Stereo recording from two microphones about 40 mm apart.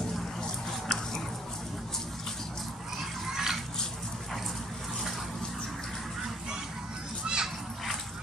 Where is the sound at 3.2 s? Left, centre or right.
Centre.